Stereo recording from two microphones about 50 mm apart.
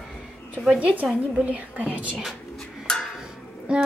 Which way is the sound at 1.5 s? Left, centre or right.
Right.